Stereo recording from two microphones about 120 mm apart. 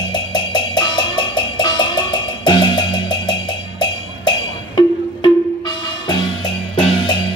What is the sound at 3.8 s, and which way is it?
Percussion, 35° left (ahead or behind).